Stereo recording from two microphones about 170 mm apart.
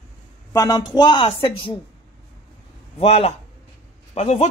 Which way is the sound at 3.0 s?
35° left (ahead or behind).